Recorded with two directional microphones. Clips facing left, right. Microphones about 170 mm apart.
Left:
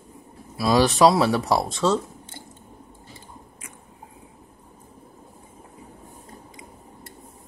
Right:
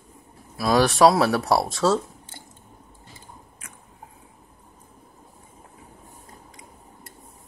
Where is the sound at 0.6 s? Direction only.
Centre (ahead or behind).